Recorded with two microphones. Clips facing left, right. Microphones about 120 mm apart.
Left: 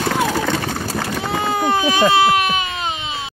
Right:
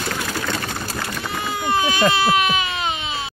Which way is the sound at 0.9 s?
90° left.